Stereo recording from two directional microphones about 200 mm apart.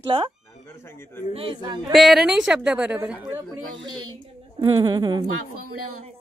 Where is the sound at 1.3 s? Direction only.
25° right (ahead or behind).